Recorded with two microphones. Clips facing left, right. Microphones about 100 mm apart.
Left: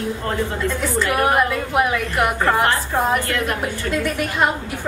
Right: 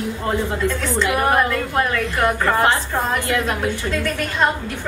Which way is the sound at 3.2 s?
15° right (ahead or behind).